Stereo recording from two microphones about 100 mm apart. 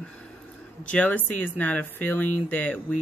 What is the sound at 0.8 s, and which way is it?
Speech, 15° left (ahead or behind).